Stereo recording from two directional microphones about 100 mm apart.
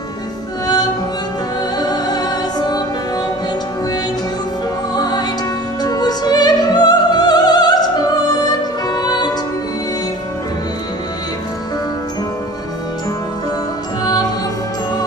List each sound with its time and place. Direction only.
1.8 s music: 45° left (ahead or behind)
4.9 s music: 45° left (ahead or behind)